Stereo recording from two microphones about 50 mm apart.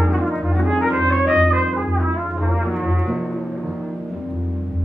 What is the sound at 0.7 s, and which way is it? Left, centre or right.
Music, centre.